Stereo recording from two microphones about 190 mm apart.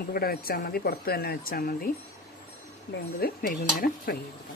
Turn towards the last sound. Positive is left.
turn(degrees=50)  # may be behind; listen again after turning